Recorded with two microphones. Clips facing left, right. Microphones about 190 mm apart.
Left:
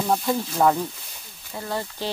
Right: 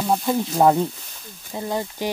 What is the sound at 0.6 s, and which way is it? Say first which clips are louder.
Speech: right 4 dB; 25° right (ahead or behind).